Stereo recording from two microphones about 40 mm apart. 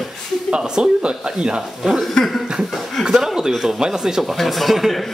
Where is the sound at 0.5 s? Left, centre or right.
Right.